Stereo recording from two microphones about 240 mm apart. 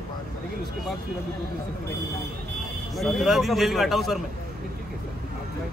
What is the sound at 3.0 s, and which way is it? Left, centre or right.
A man's voice, centre.